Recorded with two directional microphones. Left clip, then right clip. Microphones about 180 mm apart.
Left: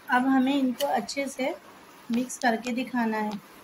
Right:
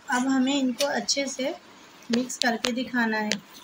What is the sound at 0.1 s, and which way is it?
Speech, centre (ahead or behind).